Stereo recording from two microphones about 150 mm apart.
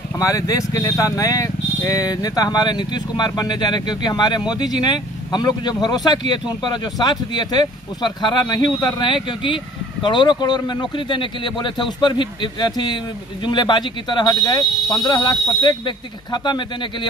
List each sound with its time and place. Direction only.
0.2 s speech: 20° left (ahead or behind)